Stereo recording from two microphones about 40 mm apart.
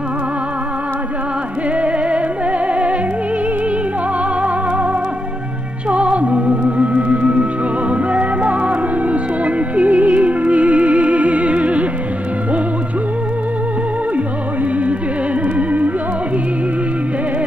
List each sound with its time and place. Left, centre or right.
1.8 s music: right
4.4 s music: right
14.1 s music: right